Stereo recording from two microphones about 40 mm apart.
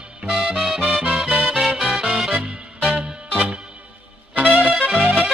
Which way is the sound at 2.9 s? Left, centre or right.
Centre.